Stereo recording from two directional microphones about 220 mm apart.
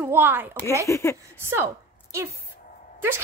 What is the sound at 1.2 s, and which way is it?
A woman's voice, 10° right (ahead or behind).